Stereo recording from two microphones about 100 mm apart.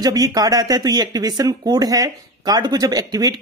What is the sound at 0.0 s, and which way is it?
Speech, 40° right (ahead or behind).